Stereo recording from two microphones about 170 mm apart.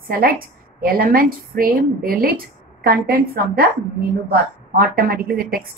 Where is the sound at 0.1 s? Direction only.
60° right (ahead or behind).